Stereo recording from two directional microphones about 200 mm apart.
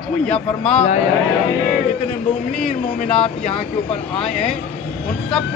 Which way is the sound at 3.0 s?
30° left (ahead or behind).